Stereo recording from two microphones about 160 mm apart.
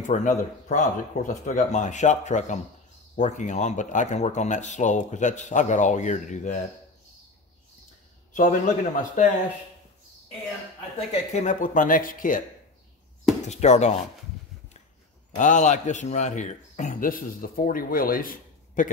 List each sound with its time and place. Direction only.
0.0 s a man's voice: 50° left (ahead or behind)
8.3 s a man's voice: 55° left (ahead or behind)
11.3 s speech: 50° left (ahead or behind)
13.4 s speech: 45° left (ahead or behind)
15.3 s a man's voice: 50° left (ahead or behind)